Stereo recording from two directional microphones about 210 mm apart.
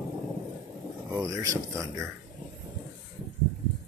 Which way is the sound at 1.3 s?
15° right (ahead or behind).